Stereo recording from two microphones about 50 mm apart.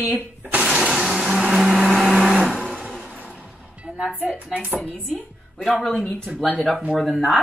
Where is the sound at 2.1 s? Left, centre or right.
Centre.